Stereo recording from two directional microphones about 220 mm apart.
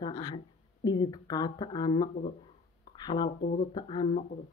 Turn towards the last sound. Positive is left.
turn(degrees=20)  # may be behind; listen again after turning